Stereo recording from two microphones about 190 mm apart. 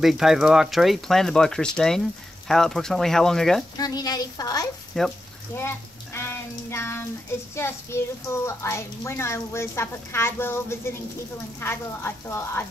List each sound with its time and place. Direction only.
0.0 s speech: centre (ahead or behind)
3.7 s a woman's voice: 20° left (ahead or behind)
4.9 s speech: centre (ahead or behind)
5.5 s speech: 10° left (ahead or behind)